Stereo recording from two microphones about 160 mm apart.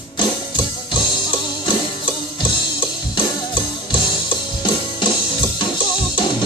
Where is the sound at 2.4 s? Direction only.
30° left (ahead or behind).